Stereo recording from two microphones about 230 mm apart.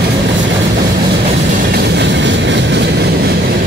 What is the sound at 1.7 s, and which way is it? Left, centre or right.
Vehicle, right.